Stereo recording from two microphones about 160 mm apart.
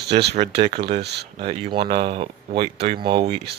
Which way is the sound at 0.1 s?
35° right (ahead or behind).